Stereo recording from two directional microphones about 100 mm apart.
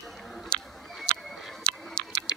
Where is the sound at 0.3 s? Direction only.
Centre (ahead or behind).